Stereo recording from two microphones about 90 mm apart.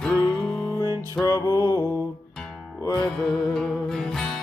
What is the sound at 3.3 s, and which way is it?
Music, 5° left (ahead or behind).